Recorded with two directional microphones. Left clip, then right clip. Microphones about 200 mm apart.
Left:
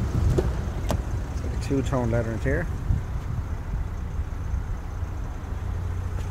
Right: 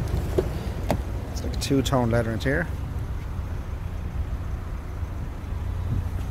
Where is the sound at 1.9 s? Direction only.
20° right (ahead or behind).